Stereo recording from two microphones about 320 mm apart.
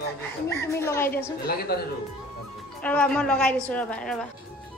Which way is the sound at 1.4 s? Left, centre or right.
Left.